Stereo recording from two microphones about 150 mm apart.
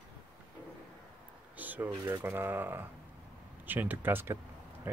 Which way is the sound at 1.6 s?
10° right (ahead or behind).